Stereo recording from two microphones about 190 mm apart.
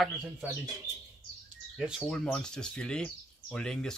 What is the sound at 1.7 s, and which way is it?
Speech, 5° right (ahead or behind).